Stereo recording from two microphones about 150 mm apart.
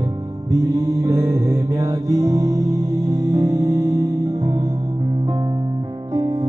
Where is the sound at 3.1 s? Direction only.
25° right (ahead or behind).